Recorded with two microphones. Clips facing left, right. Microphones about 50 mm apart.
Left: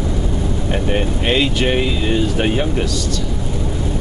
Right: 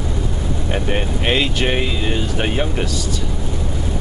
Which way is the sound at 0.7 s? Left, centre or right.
Centre.